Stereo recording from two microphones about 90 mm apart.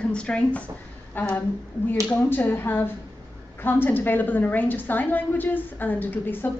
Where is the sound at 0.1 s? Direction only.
10° left (ahead or behind).